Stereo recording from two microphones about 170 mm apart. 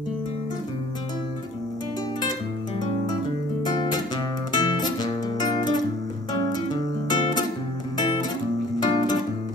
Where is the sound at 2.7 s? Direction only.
30° left (ahead or behind).